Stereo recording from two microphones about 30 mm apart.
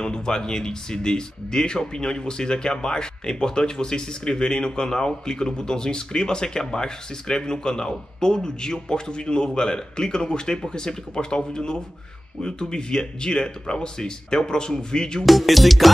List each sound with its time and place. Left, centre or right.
0.0 s speech: left
15.2 s music: centre